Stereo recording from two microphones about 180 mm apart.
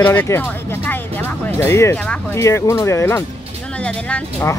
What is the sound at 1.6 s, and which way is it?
Speech, 15° left (ahead or behind).